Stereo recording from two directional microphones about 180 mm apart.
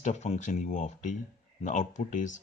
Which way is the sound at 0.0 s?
40° left (ahead or behind).